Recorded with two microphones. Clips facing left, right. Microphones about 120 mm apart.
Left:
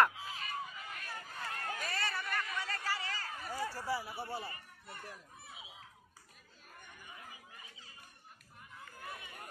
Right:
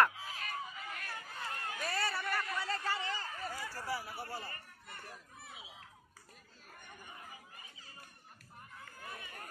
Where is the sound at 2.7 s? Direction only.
25° right (ahead or behind).